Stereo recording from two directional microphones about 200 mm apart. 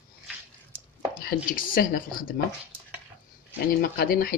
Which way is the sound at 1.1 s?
45° left (ahead or behind).